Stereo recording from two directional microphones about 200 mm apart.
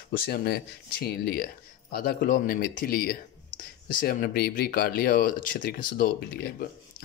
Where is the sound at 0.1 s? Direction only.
50° left (ahead or behind).